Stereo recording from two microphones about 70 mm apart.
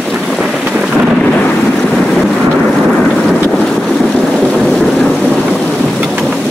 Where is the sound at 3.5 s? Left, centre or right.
Centre.